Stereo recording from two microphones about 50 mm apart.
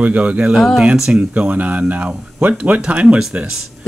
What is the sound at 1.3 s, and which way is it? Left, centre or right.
Speech, right.